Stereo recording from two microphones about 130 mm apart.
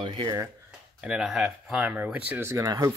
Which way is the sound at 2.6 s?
30° right (ahead or behind).